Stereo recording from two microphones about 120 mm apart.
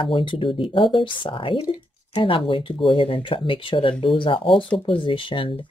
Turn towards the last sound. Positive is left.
turn(degrees=45)  # may be behind; listen again after turning